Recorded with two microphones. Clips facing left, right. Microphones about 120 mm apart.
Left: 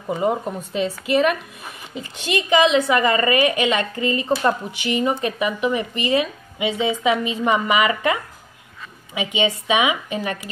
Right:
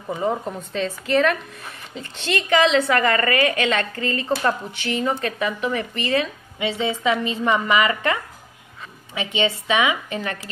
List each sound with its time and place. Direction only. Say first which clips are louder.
0.1 s speech: left 2 dB; 10° left (ahead or behind)